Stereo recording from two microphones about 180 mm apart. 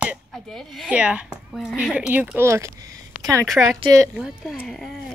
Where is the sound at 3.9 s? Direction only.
15° right (ahead or behind).